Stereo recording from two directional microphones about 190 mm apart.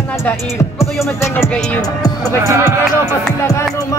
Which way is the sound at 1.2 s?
15° left (ahead or behind).